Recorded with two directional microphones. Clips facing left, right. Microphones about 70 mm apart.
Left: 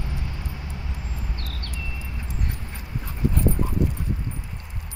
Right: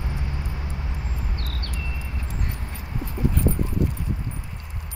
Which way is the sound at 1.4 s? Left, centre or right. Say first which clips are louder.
Right 2 dB; right.